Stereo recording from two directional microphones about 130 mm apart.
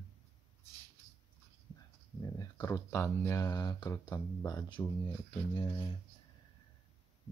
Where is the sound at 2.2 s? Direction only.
30° left (ahead or behind).